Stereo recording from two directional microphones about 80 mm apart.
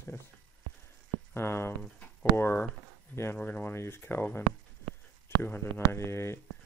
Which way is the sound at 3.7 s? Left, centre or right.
Left.